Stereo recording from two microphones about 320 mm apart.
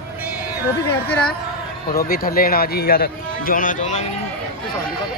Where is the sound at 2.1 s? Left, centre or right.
Left.